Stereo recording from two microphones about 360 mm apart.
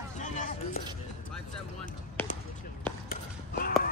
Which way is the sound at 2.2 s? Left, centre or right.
Centre.